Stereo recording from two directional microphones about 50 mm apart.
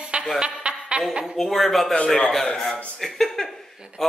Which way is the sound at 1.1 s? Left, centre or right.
Centre.